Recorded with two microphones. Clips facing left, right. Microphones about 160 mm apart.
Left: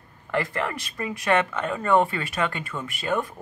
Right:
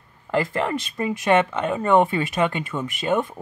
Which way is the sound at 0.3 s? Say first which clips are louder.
Right 4 dB; 25° right (ahead or behind).